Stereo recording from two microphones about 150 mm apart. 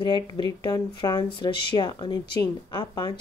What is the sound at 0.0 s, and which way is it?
Speech, 30° left (ahead or behind).